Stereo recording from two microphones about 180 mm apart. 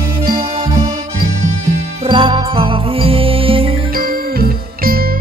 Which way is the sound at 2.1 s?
30° right (ahead or behind).